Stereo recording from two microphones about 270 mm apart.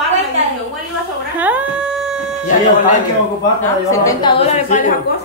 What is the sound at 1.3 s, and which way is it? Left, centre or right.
Dog, centre.